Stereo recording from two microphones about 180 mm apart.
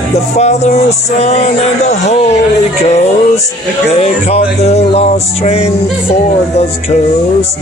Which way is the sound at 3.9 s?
35° left (ahead or behind).